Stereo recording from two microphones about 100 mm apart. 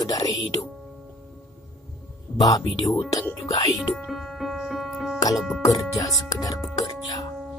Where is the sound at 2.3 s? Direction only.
40° left (ahead or behind).